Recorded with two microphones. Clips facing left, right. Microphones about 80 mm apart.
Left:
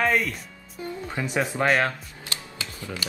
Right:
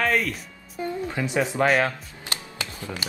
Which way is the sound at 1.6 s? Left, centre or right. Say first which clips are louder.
Right 1 dB; centre.